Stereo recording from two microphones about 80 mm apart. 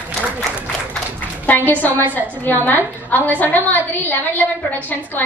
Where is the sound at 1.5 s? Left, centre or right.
Left.